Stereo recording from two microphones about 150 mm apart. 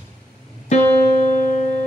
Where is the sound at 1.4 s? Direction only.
60° left (ahead or behind).